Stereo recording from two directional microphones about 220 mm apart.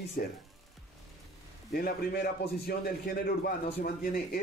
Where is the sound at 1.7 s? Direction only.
45° left (ahead or behind).